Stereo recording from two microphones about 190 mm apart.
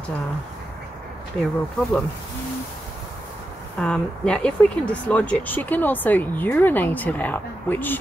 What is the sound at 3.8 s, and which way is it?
Speech, 5° left (ahead or behind).